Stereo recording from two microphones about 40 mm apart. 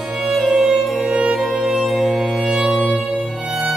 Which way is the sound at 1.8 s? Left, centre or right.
Centre.